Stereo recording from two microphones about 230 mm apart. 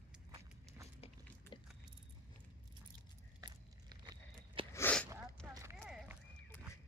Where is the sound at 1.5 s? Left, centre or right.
Left.